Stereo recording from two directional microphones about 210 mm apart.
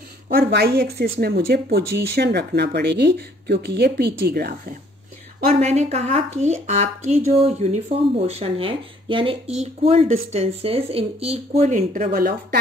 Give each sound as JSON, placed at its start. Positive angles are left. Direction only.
{"t": 0.3, "sound": "speech", "side_deg": -50}
{"t": 5.5, "sound": "speech", "side_deg": -30}